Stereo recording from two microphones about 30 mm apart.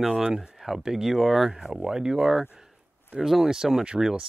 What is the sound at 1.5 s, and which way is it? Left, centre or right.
Speech, centre.